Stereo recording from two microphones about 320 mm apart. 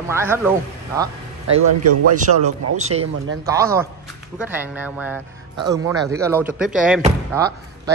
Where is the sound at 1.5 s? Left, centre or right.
Right.